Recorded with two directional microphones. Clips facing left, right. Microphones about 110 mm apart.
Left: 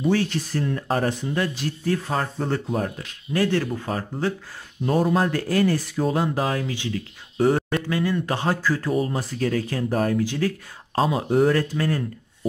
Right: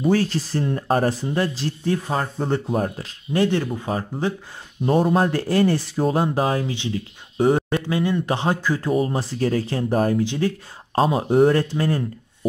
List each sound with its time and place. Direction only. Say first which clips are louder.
0.0 s speech: right 2 dB; 40° right (ahead or behind)
2.0 s speech: right 1 dB; 10° right (ahead or behind)
2.5 s speech: right 4 dB; 30° right (ahead or behind)
3.4 s speech: right 1 dB; 15° right (ahead or behind)
4.8 s speech: right 2 dB; 30° right (ahead or behind)
9.1 s speech: right 2 dB; 30° right (ahead or behind)